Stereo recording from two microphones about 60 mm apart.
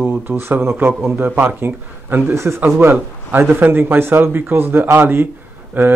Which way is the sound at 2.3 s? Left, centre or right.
Right.